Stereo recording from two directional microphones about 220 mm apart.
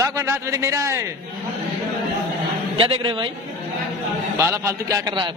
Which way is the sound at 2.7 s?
25° right (ahead or behind).